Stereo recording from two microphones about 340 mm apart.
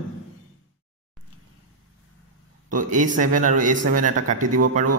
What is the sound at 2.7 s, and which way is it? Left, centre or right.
A man's voice, right.